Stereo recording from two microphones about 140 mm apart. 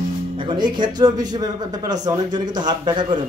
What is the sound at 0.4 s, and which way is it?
Speech, 35° right (ahead or behind).